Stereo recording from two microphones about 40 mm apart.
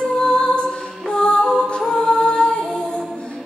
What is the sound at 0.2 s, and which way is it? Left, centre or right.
Music, left.